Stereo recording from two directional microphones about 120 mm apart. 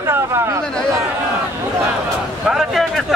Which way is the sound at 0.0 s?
20° right (ahead or behind).